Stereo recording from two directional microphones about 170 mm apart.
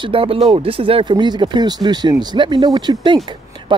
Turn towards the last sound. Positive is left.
turn(degrees=-30)  # may be behind; listen again after turning